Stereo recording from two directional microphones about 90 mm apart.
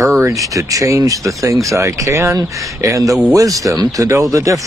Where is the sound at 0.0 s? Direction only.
35° right (ahead or behind).